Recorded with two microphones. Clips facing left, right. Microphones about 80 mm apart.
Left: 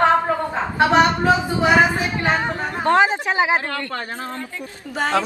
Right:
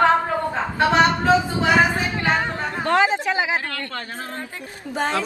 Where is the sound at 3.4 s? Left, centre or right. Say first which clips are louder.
Left 5 dB; left.